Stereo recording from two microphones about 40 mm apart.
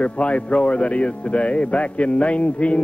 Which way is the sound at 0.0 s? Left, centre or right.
Left.